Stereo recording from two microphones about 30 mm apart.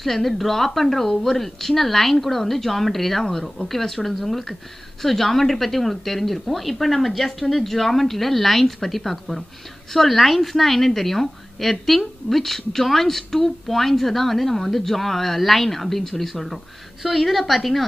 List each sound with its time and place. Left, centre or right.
0.0 s a woman's voice: centre